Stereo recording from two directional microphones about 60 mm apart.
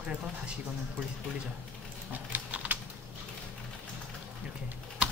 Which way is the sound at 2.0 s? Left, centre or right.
Right.